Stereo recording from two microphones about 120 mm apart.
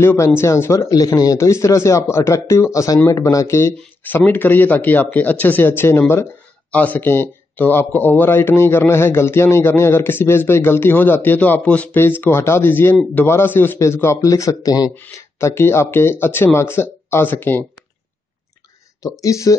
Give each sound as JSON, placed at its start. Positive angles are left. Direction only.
{"t": 0.0, "sound": "speech", "side_deg": 20}
{"t": 19.2, "sound": "speech", "side_deg": 25}